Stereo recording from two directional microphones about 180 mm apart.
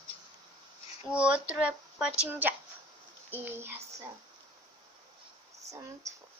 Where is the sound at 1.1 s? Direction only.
5° right (ahead or behind).